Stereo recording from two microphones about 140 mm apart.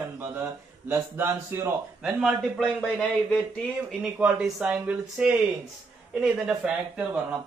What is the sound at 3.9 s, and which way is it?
Speech, 10° right (ahead or behind).